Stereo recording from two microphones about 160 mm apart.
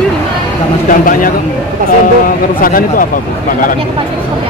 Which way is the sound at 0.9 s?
60° left (ahead or behind).